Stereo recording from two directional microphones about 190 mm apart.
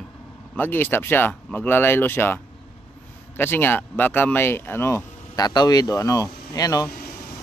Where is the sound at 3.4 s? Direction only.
10° left (ahead or behind).